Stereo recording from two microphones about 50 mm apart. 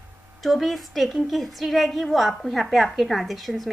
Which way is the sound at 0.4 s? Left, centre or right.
Centre.